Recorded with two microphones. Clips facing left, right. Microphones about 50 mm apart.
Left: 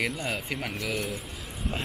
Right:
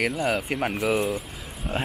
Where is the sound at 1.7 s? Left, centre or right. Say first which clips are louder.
Right 7 dB; right.